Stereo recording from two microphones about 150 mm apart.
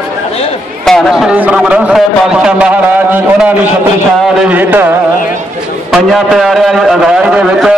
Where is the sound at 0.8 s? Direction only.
Centre (ahead or behind).